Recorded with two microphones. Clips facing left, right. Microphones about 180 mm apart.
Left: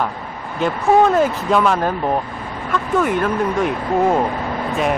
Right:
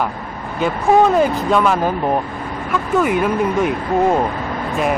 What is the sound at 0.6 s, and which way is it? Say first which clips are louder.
Speech: right 1 dB; centre (ahead or behind).